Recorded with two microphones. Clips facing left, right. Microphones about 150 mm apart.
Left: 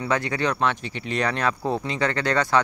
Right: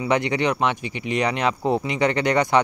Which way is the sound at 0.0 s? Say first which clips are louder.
Right 3 dB; 15° right (ahead or behind).